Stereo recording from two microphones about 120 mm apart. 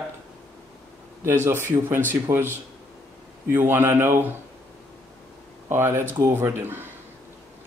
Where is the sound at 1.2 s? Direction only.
20° right (ahead or behind).